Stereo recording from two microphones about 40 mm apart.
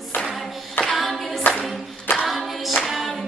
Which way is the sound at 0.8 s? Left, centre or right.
Centre.